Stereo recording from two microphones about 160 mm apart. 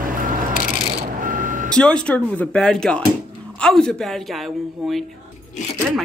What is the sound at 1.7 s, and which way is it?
Speech, 5° left (ahead or behind).